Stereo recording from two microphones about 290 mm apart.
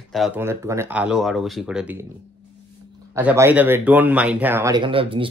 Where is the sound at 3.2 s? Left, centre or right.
Centre.